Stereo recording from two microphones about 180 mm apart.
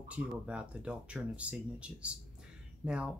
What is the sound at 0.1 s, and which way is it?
Speech, 5° right (ahead or behind).